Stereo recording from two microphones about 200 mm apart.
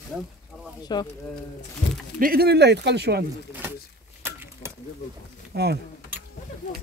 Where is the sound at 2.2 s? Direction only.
50° right (ahead or behind).